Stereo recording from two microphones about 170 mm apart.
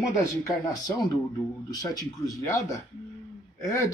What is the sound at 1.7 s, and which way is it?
Speech, 20° left (ahead or behind).